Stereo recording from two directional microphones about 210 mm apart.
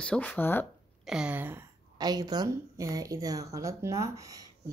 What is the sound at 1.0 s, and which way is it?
A woman's voice, 5° right (ahead or behind).